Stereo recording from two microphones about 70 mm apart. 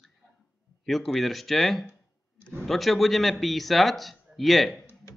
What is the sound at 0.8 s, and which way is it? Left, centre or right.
A man's voice, centre.